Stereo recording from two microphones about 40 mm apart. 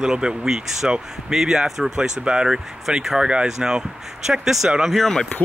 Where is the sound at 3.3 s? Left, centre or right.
Right.